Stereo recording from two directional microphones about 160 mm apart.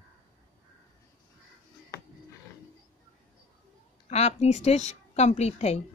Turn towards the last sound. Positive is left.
turn(degrees=40)  # may be behind; listen again after turning